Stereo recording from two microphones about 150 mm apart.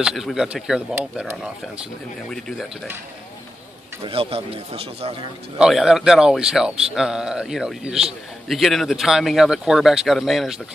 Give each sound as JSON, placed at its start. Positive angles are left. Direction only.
{"t": 0.0, "sound": "speech", "side_deg": 0}
{"t": 2.3, "sound": "speech", "side_deg": 5}
{"t": 4.0, "sound": "a man's voice", "side_deg": -40}
{"t": 5.6, "sound": "speech", "side_deg": -5}